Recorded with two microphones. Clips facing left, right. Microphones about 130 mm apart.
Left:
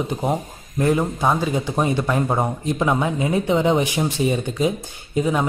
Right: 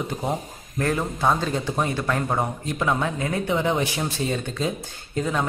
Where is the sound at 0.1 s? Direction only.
20° left (ahead or behind).